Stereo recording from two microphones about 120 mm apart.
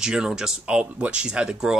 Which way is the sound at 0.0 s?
5° right (ahead or behind).